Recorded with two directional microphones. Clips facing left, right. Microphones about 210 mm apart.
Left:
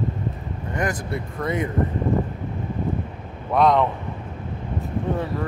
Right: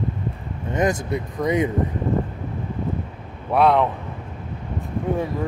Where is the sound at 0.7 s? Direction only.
20° right (ahead or behind).